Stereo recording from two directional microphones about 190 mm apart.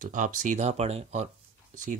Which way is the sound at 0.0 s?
45° right (ahead or behind).